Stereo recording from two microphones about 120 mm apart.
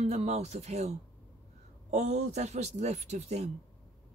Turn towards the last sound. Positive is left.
turn(degrees=-65)  # may be behind; listen again after turning